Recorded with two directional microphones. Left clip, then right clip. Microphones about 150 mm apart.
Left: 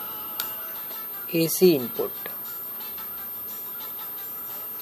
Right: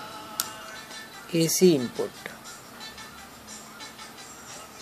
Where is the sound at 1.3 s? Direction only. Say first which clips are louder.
Left 1 dB; 5° left (ahead or behind).